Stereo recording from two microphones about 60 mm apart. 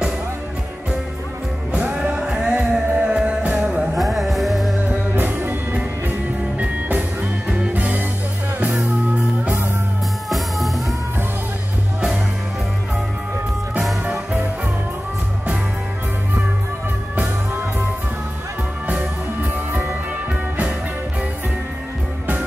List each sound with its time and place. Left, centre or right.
1.7 s music: centre
3.9 s music: centre
4.8 s music: right
10.3 s music: centre
19.5 s music: right